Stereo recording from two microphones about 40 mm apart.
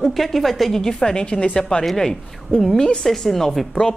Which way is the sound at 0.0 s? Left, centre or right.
Centre.